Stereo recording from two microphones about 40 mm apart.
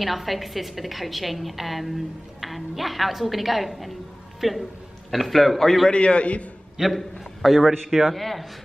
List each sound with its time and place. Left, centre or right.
0.0 s a woman's voice: centre
5.9 s a man's voice: left
6.8 s a woman's voice: centre